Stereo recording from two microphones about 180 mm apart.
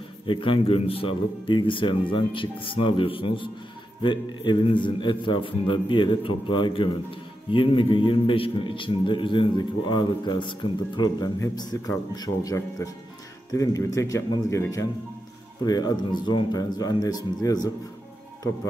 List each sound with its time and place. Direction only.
0.3 s a man's voice: 30° left (ahead or behind)